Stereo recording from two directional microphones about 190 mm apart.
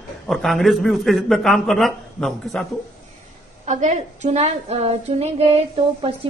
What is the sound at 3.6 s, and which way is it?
Speech, 40° right (ahead or behind).